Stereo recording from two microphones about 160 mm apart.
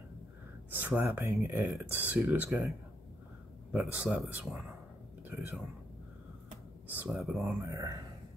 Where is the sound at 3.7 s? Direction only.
10° right (ahead or behind).